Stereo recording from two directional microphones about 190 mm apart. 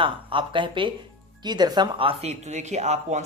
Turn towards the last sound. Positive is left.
turn(degrees=-35)  # may be behind; listen again after turning